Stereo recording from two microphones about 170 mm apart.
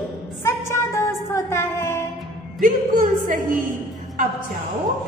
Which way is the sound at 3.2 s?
50° right (ahead or behind).